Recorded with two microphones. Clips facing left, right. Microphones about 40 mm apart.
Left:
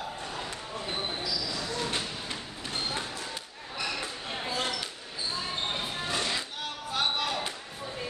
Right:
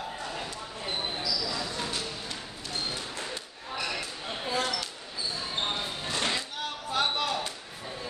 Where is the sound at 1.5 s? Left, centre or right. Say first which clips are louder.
Even; centre.